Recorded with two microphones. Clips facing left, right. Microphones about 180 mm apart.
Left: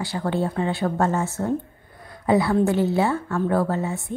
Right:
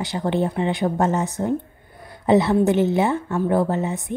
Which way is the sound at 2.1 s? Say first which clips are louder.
Right 3 dB; 25° right (ahead or behind).